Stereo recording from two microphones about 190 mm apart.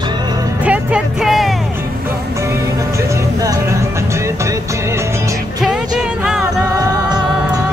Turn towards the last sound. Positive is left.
turn(degrees=-20)  # may be behind; listen again after turning